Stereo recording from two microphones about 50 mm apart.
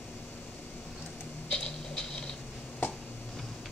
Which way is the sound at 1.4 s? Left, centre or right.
Centre.